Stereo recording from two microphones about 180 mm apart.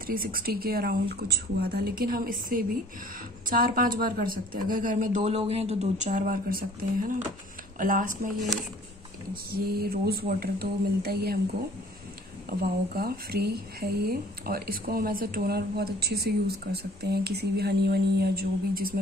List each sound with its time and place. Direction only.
0.0 s speech: 55° right (ahead or behind)
9.3 s speech: 55° right (ahead or behind)
12.4 s speech: 55° right (ahead or behind)